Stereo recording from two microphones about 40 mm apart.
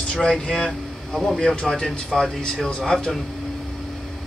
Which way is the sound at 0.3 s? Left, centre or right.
Centre.